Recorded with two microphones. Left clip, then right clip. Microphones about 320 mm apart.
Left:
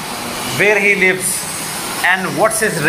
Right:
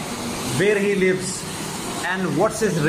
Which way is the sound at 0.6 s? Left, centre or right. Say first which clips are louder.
Left 7 dB; left.